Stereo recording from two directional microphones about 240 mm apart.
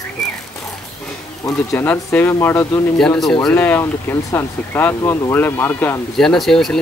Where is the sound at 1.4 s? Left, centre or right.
Centre.